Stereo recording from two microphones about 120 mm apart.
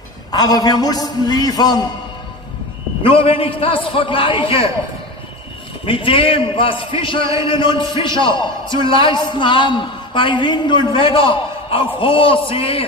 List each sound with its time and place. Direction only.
0.3 s a man's voice: 35° left (ahead or behind)
3.0 s a man's voice: 50° left (ahead or behind)
5.9 s a man's voice: 45° left (ahead or behind)